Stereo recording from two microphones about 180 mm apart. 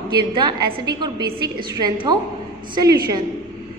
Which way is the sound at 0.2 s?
25° right (ahead or behind).